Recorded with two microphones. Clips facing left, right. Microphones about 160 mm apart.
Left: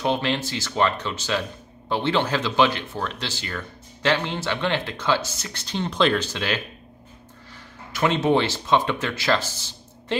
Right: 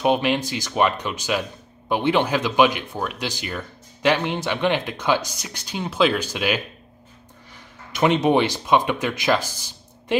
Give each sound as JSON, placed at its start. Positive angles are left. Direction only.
{"t": 0.0, "sound": "speech", "side_deg": -15}
{"t": 7.9, "sound": "speech", "side_deg": -20}